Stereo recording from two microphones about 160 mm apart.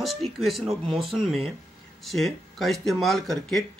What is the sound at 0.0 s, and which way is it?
Speech, centre (ahead or behind).